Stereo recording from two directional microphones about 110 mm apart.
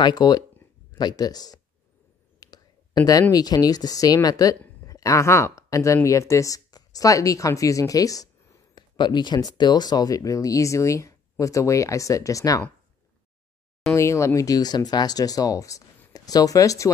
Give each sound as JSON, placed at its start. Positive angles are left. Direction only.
{"t": 0.0, "sound": "speech", "side_deg": 40}
{"t": 8.7, "sound": "speech", "side_deg": 45}
{"t": 13.9, "sound": "speech", "side_deg": 25}